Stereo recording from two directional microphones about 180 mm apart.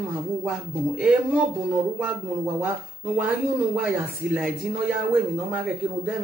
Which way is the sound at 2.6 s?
5° right (ahead or behind).